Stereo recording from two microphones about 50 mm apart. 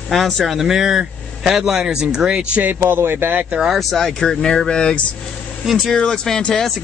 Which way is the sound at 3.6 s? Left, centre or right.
Centre.